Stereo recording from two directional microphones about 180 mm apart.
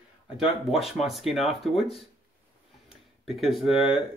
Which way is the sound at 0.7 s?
Centre (ahead or behind).